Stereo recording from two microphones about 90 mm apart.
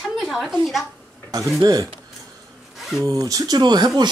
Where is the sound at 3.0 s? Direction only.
40° right (ahead or behind).